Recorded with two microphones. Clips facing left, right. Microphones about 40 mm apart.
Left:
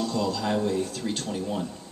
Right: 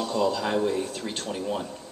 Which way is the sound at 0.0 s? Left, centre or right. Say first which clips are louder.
Right 2 dB; centre.